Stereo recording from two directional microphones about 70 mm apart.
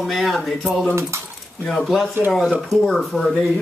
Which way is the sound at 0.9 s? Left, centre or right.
Right.